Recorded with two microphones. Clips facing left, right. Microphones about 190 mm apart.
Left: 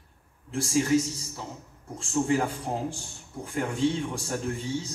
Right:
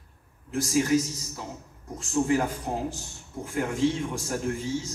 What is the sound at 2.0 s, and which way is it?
A man's voice, 30° left (ahead or behind).